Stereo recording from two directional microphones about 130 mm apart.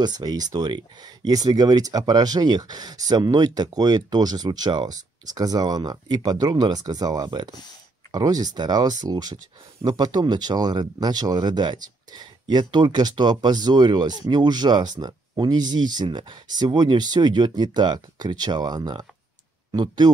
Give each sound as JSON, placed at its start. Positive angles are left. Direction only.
{"t": 0.0, "sound": "speech", "side_deg": -30}